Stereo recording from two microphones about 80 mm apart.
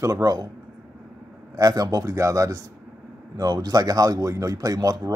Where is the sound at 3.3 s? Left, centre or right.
Right.